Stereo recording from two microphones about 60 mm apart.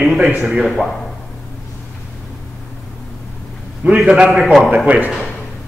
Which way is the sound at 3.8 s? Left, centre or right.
Right.